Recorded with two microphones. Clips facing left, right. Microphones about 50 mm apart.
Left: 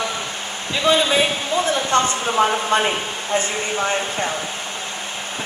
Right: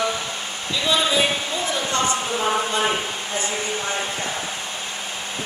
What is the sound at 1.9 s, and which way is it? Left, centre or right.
Speech, left.